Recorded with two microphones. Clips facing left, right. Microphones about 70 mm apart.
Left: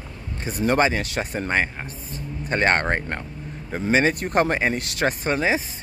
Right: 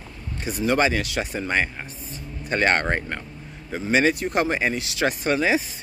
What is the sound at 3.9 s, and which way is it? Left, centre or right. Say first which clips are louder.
Speech: even; left.